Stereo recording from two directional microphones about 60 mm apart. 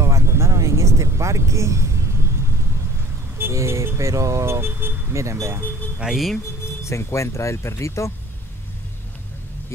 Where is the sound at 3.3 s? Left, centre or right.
Right.